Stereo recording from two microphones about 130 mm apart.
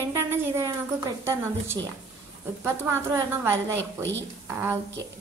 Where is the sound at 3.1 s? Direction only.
20° right (ahead or behind).